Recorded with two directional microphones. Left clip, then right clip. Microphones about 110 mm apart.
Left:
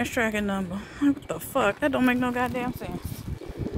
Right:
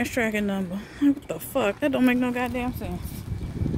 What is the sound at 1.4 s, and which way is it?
Speech, 20° right (ahead or behind).